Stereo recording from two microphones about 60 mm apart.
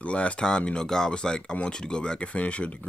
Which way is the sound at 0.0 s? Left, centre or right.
Left.